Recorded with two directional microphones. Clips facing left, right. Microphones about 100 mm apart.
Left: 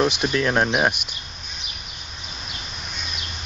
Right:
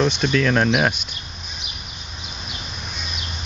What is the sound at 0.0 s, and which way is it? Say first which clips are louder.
Speech: right 1 dB; 10° left (ahead or behind).